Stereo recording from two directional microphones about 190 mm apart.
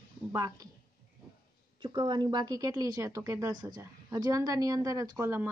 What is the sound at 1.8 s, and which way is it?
A woman's voice, 25° right (ahead or behind).